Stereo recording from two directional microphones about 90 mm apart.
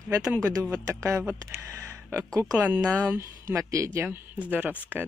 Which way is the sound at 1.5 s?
30° right (ahead or behind).